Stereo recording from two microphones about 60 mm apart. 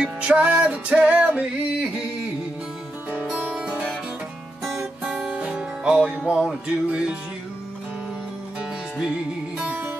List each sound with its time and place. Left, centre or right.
0.3 s music: right
3.1 s music: right
5.2 s music: centre
8.5 s music: centre